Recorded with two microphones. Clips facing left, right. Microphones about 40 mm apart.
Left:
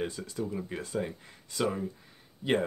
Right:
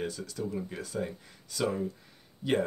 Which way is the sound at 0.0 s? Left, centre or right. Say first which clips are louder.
Left 1 dB; left.